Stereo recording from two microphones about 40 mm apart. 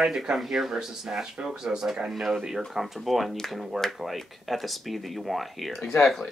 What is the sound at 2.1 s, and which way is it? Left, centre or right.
Speech, centre.